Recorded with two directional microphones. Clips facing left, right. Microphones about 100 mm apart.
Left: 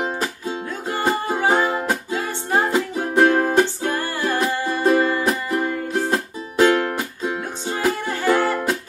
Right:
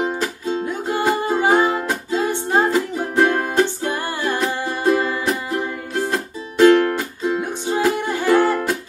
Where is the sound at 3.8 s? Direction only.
15° right (ahead or behind).